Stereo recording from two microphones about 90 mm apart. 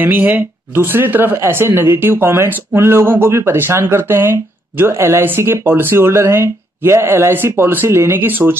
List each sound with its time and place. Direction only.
0.0 s speech: 20° right (ahead or behind)